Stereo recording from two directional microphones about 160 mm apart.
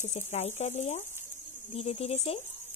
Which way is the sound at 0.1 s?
45° left (ahead or behind).